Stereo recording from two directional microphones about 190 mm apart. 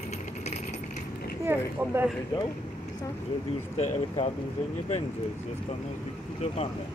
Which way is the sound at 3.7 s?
35° left (ahead or behind).